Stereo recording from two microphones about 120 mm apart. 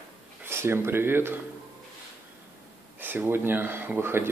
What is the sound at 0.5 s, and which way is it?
Speech, 20° right (ahead or behind).